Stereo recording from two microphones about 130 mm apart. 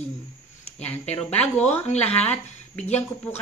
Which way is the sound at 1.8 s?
55° left (ahead or behind).